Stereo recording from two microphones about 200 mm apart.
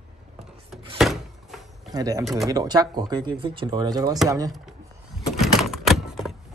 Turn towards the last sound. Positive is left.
turn(degrees=0)  # may be behind; listen again after turning